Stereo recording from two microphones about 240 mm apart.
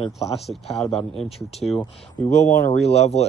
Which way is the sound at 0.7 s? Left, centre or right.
Centre.